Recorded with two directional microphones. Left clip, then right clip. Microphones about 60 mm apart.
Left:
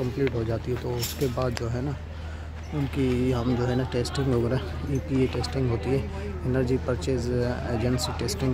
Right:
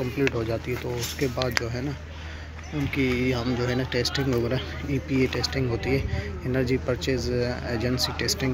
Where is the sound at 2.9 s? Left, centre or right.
Left.